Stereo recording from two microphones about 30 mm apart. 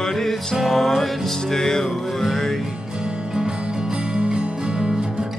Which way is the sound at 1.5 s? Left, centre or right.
Centre.